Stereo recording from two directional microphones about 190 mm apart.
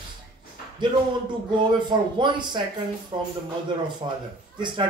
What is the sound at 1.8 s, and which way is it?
Speech, 25° right (ahead or behind).